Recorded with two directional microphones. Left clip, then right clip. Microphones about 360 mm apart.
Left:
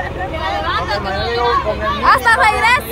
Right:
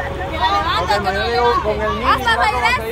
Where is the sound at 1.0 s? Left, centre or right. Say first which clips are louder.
Right 1 dB; right.